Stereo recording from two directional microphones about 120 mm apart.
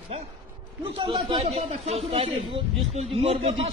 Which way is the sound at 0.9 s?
45° right (ahead or behind).